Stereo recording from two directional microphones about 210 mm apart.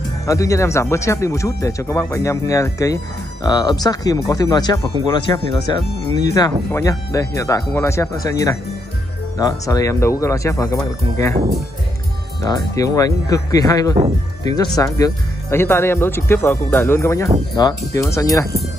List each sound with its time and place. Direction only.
0.3 s speech: 15° left (ahead or behind)
12.4 s speech: 15° left (ahead or behind)